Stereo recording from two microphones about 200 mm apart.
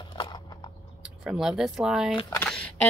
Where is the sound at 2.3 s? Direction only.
5° left (ahead or behind).